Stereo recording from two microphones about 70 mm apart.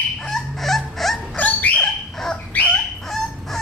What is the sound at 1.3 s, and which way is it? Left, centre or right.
Dog, left.